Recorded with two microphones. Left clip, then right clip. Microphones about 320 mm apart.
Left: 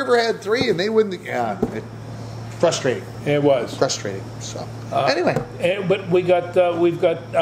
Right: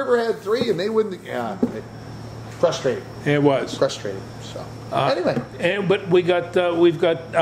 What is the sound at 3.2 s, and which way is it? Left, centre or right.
Speech, right.